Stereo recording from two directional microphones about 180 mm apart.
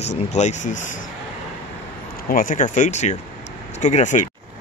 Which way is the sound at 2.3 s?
45° left (ahead or behind).